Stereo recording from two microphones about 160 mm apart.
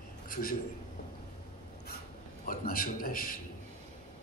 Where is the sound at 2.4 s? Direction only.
65° left (ahead or behind).